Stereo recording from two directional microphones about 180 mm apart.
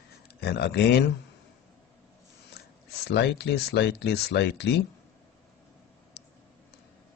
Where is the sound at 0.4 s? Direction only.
65° left (ahead or behind).